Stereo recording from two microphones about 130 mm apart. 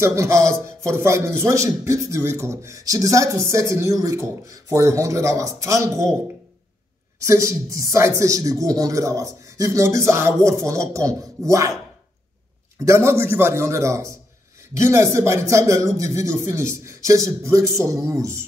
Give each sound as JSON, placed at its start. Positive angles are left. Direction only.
{"t": 0.0, "sound": "speech", "side_deg": -25}
{"t": 7.2, "sound": "speech", "side_deg": -25}
{"t": 12.8, "sound": "speech", "side_deg": -20}